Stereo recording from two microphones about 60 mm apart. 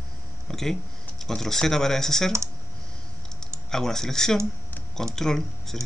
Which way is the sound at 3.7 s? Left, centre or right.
Centre.